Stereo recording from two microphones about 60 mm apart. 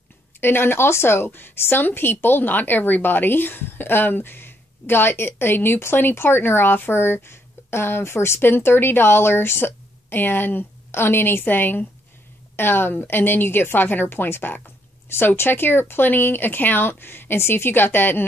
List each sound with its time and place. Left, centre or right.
0.4 s a woman's voice: left